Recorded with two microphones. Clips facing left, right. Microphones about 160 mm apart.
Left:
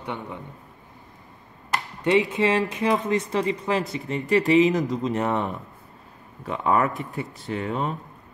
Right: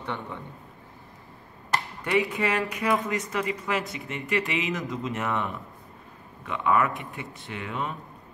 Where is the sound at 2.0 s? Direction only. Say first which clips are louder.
Left 6 dB; 25° left (ahead or behind).